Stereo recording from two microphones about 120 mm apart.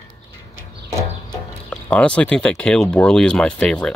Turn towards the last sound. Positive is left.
turn(degrees=10)  # may be behind; listen again after turning